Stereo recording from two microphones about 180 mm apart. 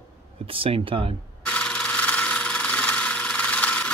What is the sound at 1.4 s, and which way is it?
Wood, 5° left (ahead or behind).